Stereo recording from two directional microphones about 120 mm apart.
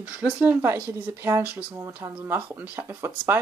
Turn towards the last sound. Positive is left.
turn(degrees=-20)  # may be behind; listen again after turning